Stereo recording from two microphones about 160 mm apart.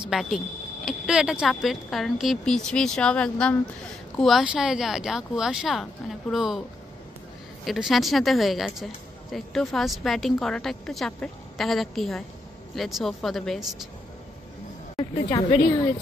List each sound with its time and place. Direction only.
0.1 s a woman's voice: centre (ahead or behind)
7.6 s a woman's voice: centre (ahead or behind)
15.0 s a sound: 25° left (ahead or behind)